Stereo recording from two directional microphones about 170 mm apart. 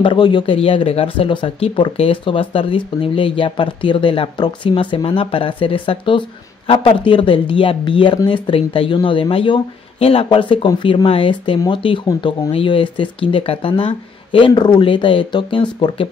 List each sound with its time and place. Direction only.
0.0 s speech: 25° left (ahead or behind)